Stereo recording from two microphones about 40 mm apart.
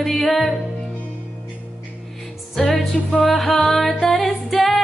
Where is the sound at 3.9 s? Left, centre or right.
Left.